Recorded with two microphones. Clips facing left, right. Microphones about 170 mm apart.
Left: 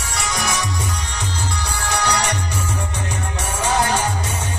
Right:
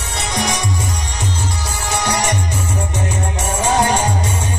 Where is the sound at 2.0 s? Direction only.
10° right (ahead or behind).